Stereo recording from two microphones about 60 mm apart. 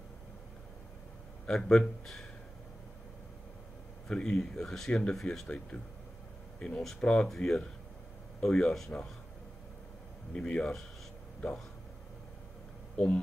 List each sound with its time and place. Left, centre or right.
1.4 s speech: centre
4.1 s speech: centre
6.6 s speech: centre
10.3 s speech: centre
12.9 s speech: centre